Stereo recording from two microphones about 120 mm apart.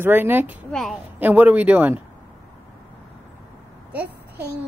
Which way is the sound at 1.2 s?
15° right (ahead or behind).